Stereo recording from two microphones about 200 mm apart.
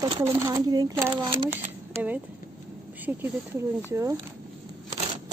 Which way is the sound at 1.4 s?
35° right (ahead or behind).